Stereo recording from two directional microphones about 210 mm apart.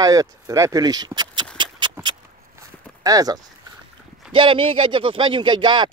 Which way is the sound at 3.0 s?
15° right (ahead or behind).